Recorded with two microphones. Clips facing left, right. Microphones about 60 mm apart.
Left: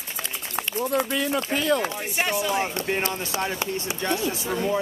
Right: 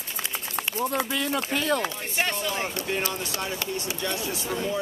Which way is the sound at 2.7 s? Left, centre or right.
Left.